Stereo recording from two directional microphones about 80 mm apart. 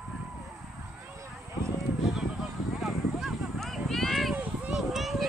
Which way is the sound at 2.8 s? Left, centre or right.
Centre.